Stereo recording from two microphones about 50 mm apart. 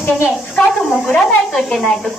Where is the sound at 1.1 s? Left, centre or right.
Centre.